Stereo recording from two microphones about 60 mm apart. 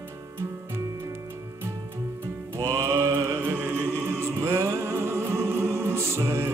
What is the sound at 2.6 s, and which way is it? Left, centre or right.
Music, right.